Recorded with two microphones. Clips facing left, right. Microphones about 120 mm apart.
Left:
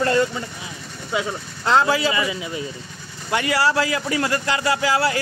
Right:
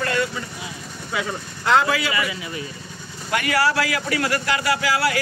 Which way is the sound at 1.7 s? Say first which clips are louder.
Left 1 dB; 30° left (ahead or behind).